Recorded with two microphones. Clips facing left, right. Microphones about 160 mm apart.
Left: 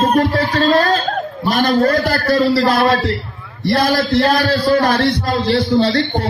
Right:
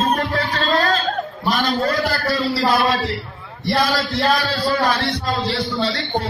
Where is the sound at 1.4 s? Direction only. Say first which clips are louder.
Left 6 dB; 55° left (ahead or behind).